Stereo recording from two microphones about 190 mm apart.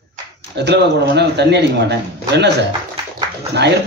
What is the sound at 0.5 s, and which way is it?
A man's voice, 65° right (ahead or behind).